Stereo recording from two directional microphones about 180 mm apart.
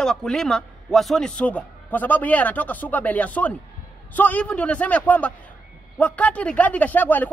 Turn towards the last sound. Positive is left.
turn(degrees=10)  # may be behind; listen again after turning